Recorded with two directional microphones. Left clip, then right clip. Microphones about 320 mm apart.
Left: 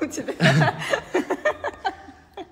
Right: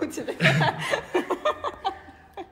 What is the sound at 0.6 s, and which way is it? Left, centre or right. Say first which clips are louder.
Chuckle: left 2 dB; left.